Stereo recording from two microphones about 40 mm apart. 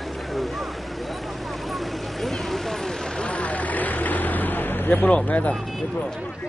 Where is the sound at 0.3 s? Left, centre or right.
Centre.